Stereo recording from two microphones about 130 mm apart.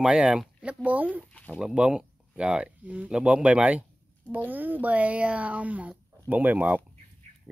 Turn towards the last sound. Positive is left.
turn(degrees=-15)  # may be behind; listen again after turning